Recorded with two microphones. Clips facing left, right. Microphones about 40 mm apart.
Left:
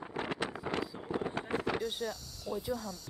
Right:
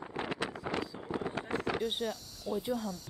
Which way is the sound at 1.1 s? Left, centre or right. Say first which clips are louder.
Left 1 dB; right.